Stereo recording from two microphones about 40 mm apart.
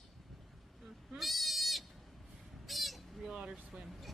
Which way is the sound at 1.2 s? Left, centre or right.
Centre.